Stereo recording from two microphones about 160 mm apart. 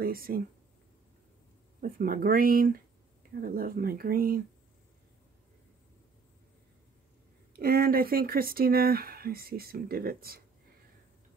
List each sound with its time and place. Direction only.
0.0 s speech: 65° right (ahead or behind)
1.8 s speech: 65° right (ahead or behind)
7.5 s speech: 70° right (ahead or behind)